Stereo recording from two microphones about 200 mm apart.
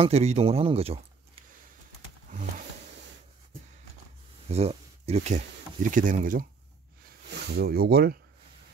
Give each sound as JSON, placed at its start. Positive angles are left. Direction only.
{"t": 0.0, "sound": "speech", "side_deg": -35}
{"t": 4.5, "sound": "speech", "side_deg": -30}
{"t": 7.2, "sound": "speech", "side_deg": -55}